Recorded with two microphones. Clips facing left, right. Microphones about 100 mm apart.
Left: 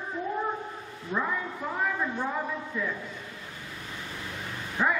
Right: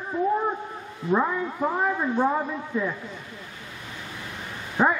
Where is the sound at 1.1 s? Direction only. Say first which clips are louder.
Right 7 dB; 35° right (ahead or behind).